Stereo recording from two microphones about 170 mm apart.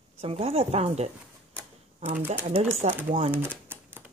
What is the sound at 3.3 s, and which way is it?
Speech, 10° right (ahead or behind).